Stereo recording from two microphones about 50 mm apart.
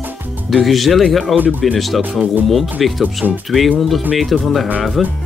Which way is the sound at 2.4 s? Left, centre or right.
Centre.